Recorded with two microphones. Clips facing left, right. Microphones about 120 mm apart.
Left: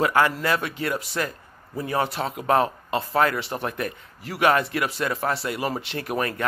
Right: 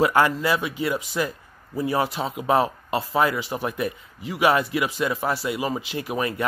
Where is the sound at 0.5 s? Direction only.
5° right (ahead or behind).